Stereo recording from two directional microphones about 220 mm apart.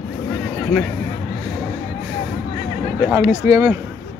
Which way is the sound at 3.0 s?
5° right (ahead or behind).